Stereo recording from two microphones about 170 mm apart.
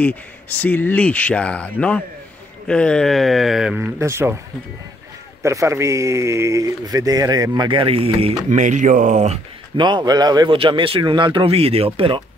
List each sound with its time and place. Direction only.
0.0 s speech: 10° left (ahead or behind); by 4.4 s 15° right (ahead or behind)
5.4 s speech: 15° right (ahead or behind); by 9.4 s 45° right (ahead or behind)
9.8 s speech: 25° right (ahead or behind)